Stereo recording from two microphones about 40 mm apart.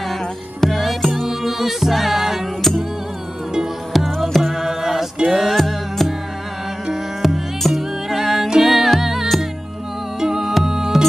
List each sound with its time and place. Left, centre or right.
0.6 s music: centre
3.9 s music: centre
7.2 s music: centre